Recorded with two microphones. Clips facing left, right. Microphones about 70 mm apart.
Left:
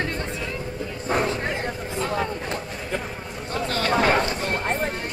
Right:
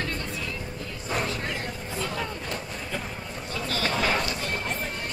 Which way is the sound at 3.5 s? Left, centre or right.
Left.